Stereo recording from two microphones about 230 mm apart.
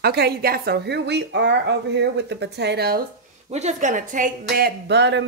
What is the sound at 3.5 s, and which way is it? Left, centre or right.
Speech, right.